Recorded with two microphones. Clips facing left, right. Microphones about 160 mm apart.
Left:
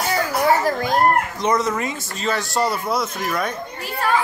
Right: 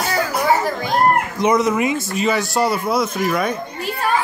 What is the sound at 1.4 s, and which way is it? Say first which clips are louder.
Speech: right 4 dB; 10° right (ahead or behind).